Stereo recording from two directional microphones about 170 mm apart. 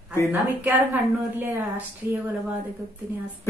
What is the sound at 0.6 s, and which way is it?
Speech, 10° right (ahead or behind).